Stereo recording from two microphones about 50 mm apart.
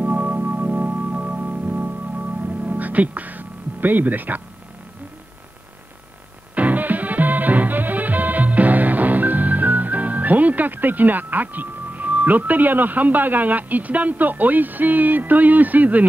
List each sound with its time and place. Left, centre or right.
0.0 s music: right
6.5 s music: right